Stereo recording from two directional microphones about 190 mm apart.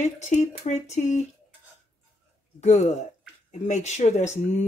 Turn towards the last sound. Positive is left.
turn(degrees=40)  # may be behind; listen again after turning